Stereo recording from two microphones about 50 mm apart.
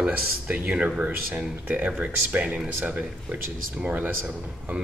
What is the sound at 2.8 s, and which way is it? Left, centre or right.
Speech, right.